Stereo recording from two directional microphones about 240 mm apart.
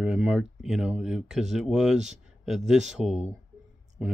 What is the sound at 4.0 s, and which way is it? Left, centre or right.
Speech, centre.